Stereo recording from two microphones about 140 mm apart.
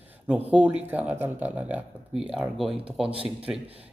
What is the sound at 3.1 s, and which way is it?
Speech, 40° right (ahead or behind).